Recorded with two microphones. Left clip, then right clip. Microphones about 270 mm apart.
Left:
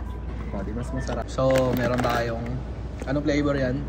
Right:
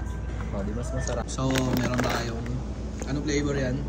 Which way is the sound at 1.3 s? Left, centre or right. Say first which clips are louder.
Left 8 dB; centre.